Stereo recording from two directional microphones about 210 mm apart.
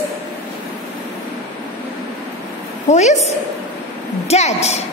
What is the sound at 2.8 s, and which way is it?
A woman's voice, 35° left (ahead or behind).